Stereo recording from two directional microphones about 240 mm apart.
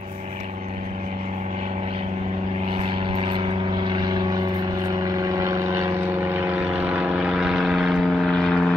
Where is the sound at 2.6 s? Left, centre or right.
Right.